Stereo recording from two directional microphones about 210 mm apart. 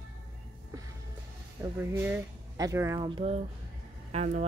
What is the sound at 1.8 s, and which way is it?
Speech, 10° right (ahead or behind).